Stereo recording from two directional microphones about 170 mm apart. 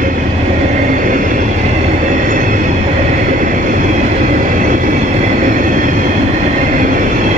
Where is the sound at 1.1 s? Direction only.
50° right (ahead or behind).